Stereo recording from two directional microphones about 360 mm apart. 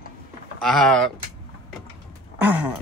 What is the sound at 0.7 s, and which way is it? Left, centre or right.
Speech, centre.